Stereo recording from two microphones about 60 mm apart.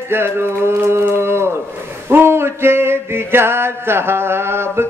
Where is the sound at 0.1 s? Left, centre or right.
Right.